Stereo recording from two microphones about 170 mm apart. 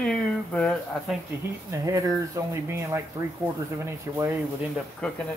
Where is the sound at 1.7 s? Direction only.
20° right (ahead or behind).